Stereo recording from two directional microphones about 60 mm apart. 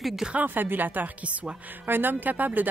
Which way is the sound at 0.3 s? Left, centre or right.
Right.